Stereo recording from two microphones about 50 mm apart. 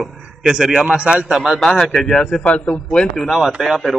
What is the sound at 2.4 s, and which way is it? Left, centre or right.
Speech, left.